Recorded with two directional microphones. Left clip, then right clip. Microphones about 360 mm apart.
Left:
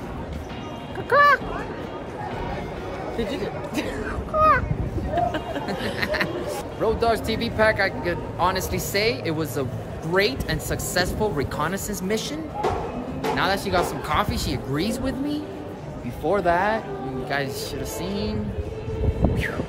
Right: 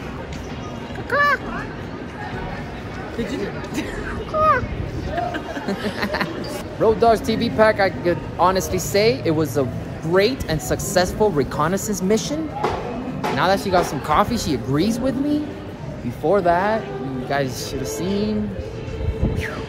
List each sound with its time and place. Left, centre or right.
1.1 s speech: centre
3.2 s speech: left
4.4 s speech: centre
6.8 s speech: centre
13.4 s speech: centre
18.0 s speech: centre